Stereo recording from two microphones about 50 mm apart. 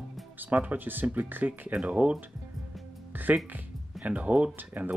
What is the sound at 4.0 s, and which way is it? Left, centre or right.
Speech, right.